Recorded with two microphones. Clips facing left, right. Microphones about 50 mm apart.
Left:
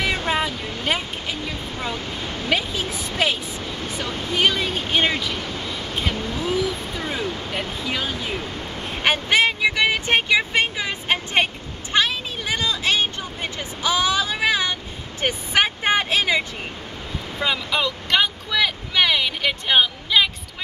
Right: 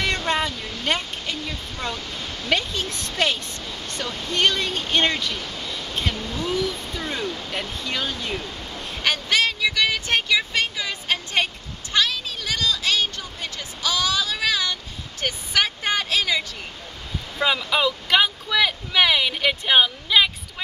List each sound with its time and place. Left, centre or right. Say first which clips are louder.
0.0 s vehicle: left 1 dB; centre
2.0 s a sound: left 3 dB; centre
2.5 s speech: even; centre
8.5 s vehicle: left 3 dB; left
17.4 s speech: right 2 dB; centre